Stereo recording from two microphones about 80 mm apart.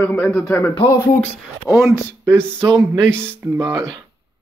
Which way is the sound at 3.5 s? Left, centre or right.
Right.